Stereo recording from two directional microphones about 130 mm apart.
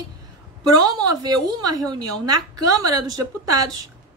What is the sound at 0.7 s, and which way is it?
A woman's voice, 30° right (ahead or behind).